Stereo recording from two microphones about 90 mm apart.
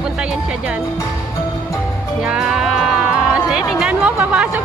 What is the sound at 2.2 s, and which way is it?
Music, 5° right (ahead or behind).